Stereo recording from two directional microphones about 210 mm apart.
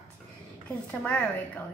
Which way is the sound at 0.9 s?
5° left (ahead or behind).